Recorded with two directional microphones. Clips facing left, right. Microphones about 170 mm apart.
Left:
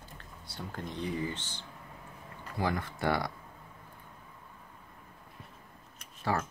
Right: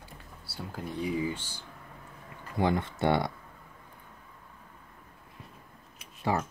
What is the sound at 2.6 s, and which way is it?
Speech, 25° right (ahead or behind).